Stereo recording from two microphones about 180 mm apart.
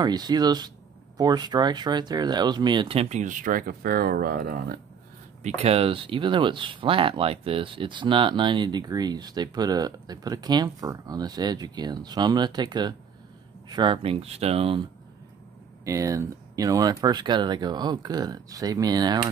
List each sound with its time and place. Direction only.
0.0 s speech: 20° right (ahead or behind); by 4.7 s 50° right (ahead or behind)
5.4 s speech: 40° right (ahead or behind)
15.8 s speech: 15° right (ahead or behind)